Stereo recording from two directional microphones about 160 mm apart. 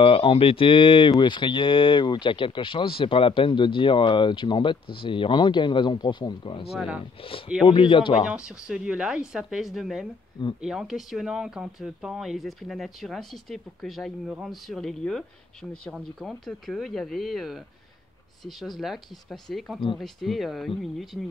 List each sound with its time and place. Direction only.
0.0 s speech: 35° left (ahead or behind)
8.3 s speech: 5° right (ahead or behind)